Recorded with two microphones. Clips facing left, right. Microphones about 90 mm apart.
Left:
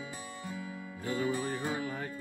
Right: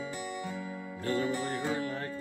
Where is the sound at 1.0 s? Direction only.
15° left (ahead or behind).